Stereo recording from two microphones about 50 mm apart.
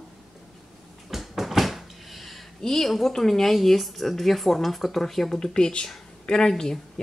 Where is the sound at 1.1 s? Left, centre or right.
Centre.